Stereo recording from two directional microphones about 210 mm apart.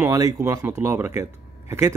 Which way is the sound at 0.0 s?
15° right (ahead or behind).